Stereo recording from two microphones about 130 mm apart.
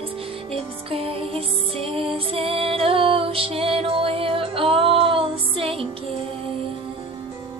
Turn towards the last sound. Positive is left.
turn(degrees=-45)  # may be behind; listen again after turning